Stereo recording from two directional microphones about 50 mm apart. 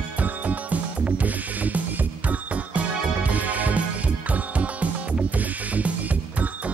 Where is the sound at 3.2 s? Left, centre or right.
Right.